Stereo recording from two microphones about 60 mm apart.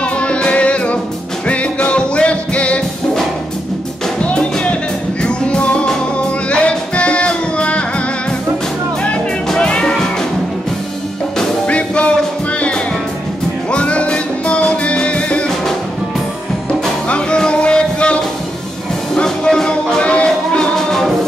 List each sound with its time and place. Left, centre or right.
0.0 s music: centre
4.2 s music: centre
9.5 s music: centre
11.6 s music: centre
13.7 s music: centre
17.1 s music: centre
20.7 s music: centre